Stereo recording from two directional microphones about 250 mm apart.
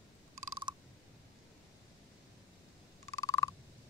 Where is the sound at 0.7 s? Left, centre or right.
Centre.